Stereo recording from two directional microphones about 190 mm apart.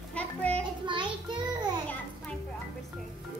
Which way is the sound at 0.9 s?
25° right (ahead or behind).